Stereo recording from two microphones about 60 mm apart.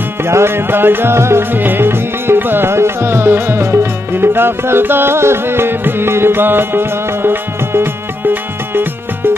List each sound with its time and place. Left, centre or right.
0.2 s music: right
1.5 s music: right